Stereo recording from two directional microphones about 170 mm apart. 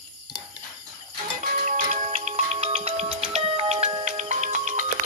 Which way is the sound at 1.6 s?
50° right (ahead or behind).